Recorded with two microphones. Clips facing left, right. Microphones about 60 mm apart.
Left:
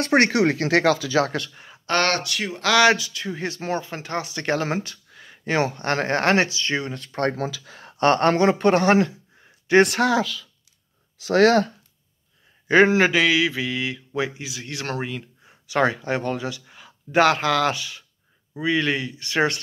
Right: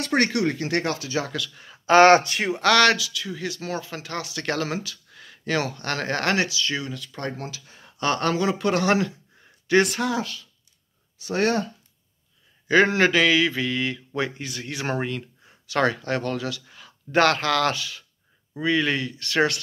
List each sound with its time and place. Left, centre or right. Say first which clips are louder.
0.0 s speech: left 4 dB; left
1.5 s speech: left 1 dB; centre
1.9 s speech: right 8 dB; centre
2.6 s speech: left 1 dB; centre
3.0 s speech: left 2 dB; left
5.1 s a sound: left 1 dB; centre
5.4 s speech: left 3 dB; left
8.8 s speech: left 4 dB; left
9.8 s speech: left 5 dB; left
11.2 s speech: left 7 dB; left
12.8 s speech: left 2 dB; centre
15.4 s speech: left 2 dB; centre